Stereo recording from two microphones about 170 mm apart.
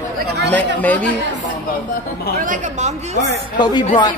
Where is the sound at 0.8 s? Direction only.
10° left (ahead or behind).